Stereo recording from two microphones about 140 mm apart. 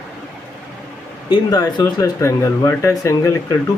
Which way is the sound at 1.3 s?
30° left (ahead or behind).